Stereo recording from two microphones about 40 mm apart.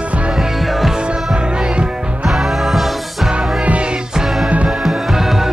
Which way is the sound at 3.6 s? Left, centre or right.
Right.